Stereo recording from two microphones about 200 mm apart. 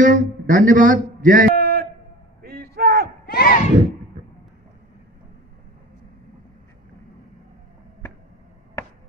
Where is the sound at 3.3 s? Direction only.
50° left (ahead or behind).